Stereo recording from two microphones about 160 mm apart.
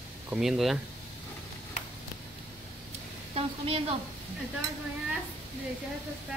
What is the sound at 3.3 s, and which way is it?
Speech, 35° right (ahead or behind).